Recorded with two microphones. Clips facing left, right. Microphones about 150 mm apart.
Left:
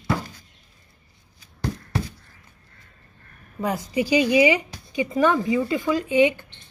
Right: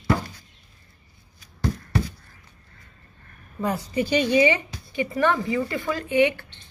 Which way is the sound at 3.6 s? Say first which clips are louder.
Left 1 dB; 15° left (ahead or behind).